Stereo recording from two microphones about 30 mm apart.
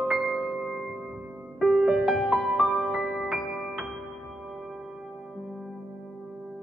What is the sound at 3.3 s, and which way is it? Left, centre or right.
Music, centre.